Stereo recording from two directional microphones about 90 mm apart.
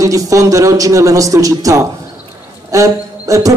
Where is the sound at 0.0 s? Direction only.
40° right (ahead or behind).